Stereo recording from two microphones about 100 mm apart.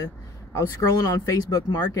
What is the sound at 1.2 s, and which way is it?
Speech, 35° left (ahead or behind).